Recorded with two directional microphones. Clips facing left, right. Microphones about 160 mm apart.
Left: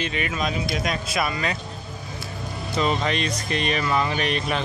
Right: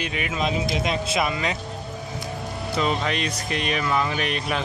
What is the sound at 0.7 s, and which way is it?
Speech, 25° right (ahead or behind).